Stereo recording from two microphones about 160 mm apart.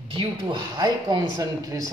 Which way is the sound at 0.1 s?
30° right (ahead or behind).